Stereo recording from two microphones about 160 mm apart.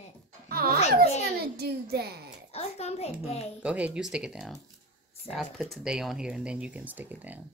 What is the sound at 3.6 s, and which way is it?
Speech, 10° right (ahead or behind).